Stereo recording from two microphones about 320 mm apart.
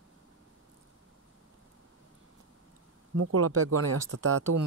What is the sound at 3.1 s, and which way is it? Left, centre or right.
Speech, right.